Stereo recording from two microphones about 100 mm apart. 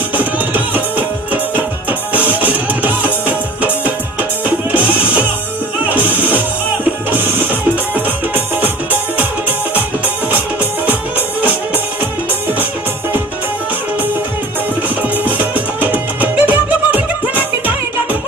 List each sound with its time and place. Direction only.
0.1 s music: 15° right (ahead or behind)
5.9 s music: 15° right (ahead or behind)
10.3 s music: 15° right (ahead or behind)
15.0 s music: 15° right (ahead or behind)